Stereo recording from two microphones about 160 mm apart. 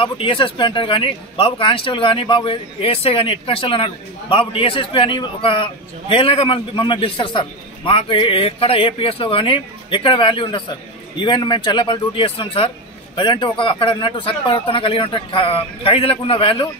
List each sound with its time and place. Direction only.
0.0 s speech: 35° left (ahead or behind)